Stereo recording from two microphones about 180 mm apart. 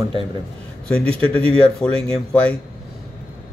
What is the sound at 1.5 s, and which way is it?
Speech, 5° left (ahead or behind).